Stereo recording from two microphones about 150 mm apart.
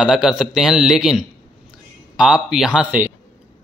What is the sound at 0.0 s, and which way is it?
Speech, 5° right (ahead or behind).